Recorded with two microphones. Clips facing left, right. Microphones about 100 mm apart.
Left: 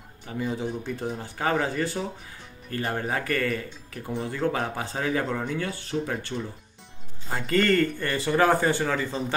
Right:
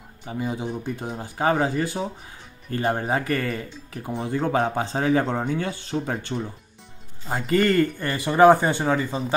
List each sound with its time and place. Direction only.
0.2 s speech: 20° right (ahead or behind)